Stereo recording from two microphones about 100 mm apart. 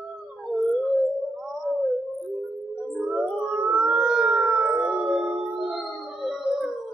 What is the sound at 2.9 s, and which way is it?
Music, 15° right (ahead or behind).